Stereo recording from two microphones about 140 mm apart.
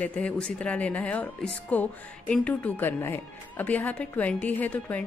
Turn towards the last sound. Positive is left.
turn(degrees=10)  # may be behind; listen again after turning